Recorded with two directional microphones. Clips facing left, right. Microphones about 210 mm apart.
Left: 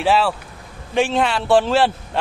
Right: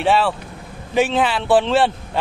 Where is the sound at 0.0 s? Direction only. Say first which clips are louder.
Even; centre (ahead or behind).